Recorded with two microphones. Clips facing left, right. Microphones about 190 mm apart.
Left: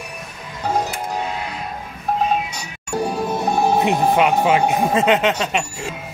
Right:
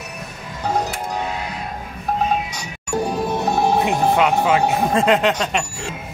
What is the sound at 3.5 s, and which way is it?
Speech, 15° left (ahead or behind).